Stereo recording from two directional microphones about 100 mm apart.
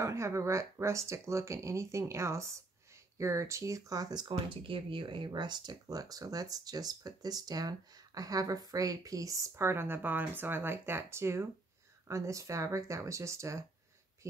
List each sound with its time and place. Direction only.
0.0 s speech: 30° right (ahead or behind)